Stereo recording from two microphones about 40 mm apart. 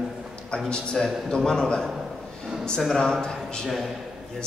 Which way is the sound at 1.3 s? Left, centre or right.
Centre.